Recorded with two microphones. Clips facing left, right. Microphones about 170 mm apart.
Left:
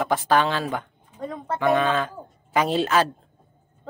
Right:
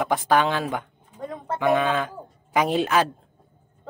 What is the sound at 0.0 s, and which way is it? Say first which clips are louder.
Speech: even; 15° right (ahead or behind).